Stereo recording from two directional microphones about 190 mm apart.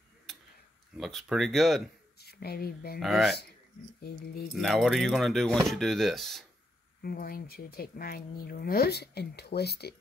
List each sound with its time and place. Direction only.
0.9 s speech: centre (ahead or behind)
2.1 s speech: 55° left (ahead or behind)
3.0 s speech: centre (ahead or behind)
4.6 s speech: centre (ahead or behind)
7.0 s speech: 50° left (ahead or behind)